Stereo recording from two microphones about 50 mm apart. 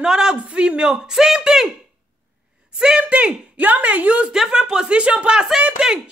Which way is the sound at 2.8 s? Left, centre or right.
Centre.